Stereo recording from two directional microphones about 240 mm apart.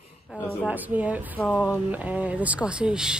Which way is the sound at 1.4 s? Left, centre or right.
Centre.